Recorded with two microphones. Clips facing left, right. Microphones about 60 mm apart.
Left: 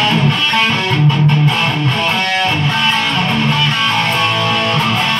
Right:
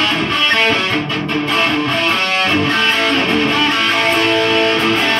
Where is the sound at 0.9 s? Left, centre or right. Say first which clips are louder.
Left 4 dB; right.